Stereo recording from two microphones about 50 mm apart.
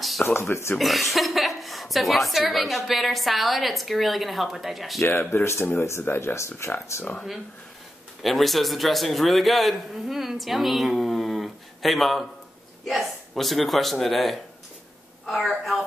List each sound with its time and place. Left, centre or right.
0.0 s a sound: centre
0.3 s speech: left
0.7 s a man's voice: centre
5.3 s speech: left
6.3 s speech: left
8.2 s a man's voice: centre